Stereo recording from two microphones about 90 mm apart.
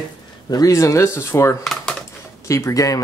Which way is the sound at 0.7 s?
35° left (ahead or behind).